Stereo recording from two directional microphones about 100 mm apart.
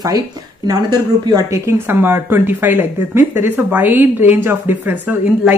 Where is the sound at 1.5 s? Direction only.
25° right (ahead or behind).